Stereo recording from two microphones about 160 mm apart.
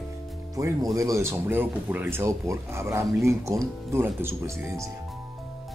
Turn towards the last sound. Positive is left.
turn(degrees=-20)  # may be behind; listen again after turning